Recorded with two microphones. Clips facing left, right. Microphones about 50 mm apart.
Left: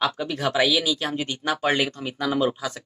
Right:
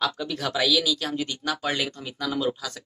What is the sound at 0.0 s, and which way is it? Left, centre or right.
Speech, left.